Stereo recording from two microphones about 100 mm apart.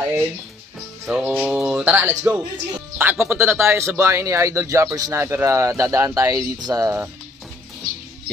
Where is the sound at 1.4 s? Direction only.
10° right (ahead or behind); by 7.0 s 35° right (ahead or behind).